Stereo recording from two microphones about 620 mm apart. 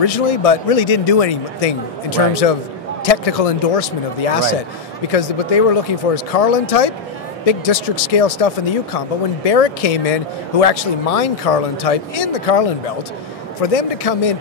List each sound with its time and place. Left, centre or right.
0.0 s speech: left